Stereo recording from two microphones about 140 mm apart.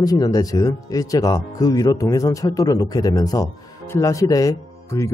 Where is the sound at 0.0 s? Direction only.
25° left (ahead or behind).